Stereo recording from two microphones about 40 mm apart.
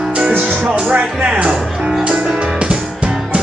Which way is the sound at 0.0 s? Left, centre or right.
Right.